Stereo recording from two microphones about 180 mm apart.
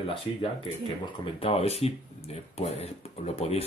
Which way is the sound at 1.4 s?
35° left (ahead or behind).